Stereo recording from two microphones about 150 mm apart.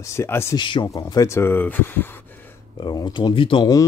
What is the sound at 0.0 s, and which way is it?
Speech, 20° left (ahead or behind).